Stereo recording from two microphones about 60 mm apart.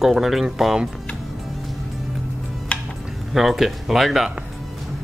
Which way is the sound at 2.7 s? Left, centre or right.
Centre.